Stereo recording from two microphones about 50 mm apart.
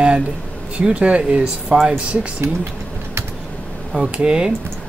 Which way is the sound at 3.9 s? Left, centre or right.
Centre.